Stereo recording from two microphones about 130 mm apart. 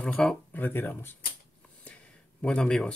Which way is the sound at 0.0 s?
5° left (ahead or behind).